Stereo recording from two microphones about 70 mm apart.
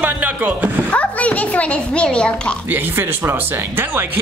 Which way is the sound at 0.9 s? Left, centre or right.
Centre.